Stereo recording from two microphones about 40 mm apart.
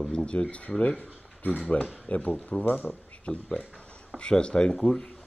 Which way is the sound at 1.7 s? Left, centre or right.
Left.